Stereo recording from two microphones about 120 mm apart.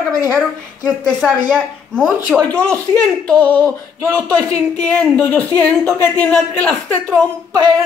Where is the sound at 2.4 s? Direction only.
10° left (ahead or behind).